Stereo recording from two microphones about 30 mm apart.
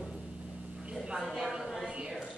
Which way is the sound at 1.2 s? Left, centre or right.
Centre.